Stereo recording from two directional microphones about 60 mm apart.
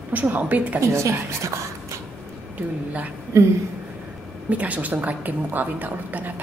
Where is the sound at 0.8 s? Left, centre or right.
Right.